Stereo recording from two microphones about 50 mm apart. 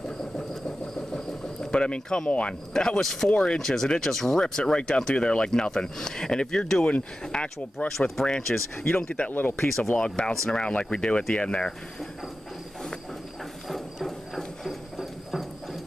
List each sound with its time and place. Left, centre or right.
0.2 s a sound: centre
1.8 s speech: centre
3.3 s speech: centre
3.5 s speech: centre; by 7.9 s left
8.2 s speech: centre
8.9 s speech: left
9.3 s speech: left
9.6 s speech: centre
13.7 s clip-clop: centre